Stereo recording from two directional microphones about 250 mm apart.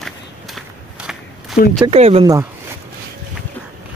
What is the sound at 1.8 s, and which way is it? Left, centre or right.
Speech, right.